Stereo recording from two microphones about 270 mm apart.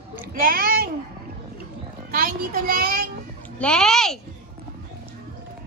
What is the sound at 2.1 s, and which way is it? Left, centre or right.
Speech, right.